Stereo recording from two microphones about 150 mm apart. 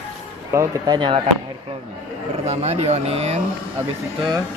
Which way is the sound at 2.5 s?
45° right (ahead or behind).